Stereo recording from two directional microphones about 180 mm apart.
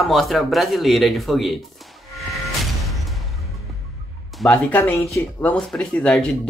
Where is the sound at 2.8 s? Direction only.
Centre (ahead or behind).